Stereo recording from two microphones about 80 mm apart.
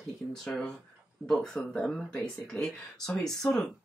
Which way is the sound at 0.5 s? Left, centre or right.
Centre.